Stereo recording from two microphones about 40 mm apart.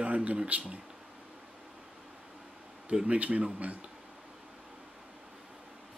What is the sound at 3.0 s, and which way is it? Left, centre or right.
Speech, right.